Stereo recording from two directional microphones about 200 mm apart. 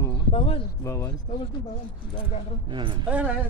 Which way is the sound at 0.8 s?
15° left (ahead or behind).